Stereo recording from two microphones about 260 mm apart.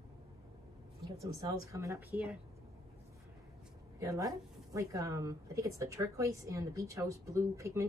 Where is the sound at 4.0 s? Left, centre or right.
Centre.